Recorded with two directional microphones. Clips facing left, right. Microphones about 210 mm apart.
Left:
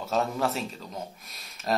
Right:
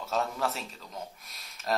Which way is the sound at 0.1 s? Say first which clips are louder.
Left 4 dB; 20° left (ahead or behind).